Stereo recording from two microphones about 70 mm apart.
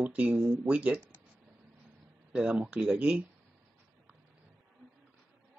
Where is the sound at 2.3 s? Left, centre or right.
Centre.